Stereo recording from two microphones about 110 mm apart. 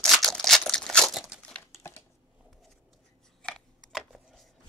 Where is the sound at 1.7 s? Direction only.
25° left (ahead or behind).